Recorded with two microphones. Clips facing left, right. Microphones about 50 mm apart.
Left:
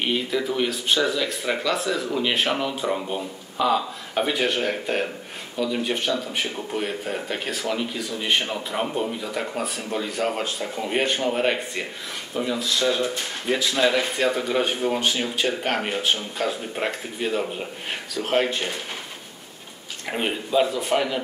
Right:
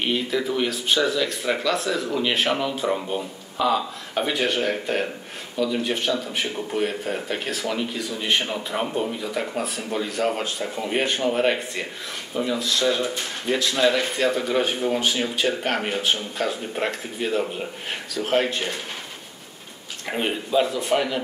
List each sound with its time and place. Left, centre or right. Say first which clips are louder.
0.0 s speech: even; centre
20.1 s speech: right 1 dB; centre